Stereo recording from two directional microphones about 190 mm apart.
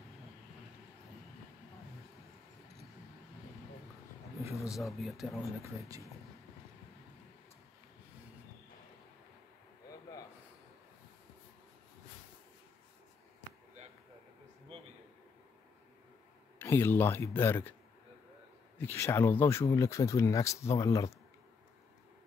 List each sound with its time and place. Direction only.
4.6 s speech: centre (ahead or behind)
5.6 s speech: 15° right (ahead or behind)
16.5 s speech: 10° left (ahead or behind)
18.8 s speech: 10° left (ahead or behind)